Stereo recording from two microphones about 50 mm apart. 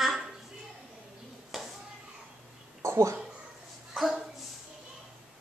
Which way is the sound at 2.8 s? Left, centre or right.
Right.